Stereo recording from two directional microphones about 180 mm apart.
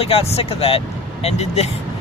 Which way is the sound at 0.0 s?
35° left (ahead or behind).